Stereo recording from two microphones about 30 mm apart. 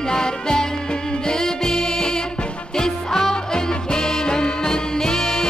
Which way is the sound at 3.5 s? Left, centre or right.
Left.